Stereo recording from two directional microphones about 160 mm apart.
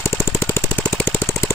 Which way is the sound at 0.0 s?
15° left (ahead or behind).